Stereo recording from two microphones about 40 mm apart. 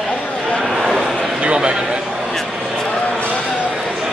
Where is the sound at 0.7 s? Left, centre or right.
Centre.